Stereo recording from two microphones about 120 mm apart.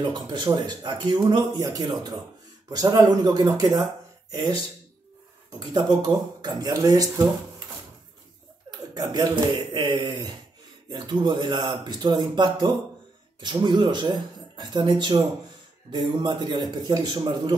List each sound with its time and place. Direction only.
0.0 s speech: 40° right (ahead or behind)
5.6 s speech: 35° right (ahead or behind)
8.6 s speech: 35° right (ahead or behind)